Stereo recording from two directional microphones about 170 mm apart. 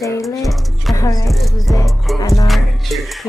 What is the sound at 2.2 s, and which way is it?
Speech, 20° left (ahead or behind).